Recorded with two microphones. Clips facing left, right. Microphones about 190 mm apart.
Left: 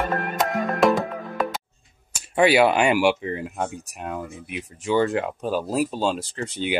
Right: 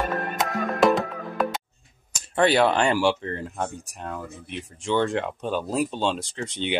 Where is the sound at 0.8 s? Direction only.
Centre (ahead or behind).